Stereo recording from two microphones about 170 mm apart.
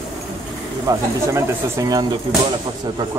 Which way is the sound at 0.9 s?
20° right (ahead or behind).